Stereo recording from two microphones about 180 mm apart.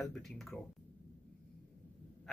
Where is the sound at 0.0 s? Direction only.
5° left (ahead or behind).